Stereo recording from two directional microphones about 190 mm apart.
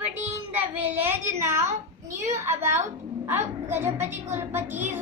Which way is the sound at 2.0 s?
15° right (ahead or behind).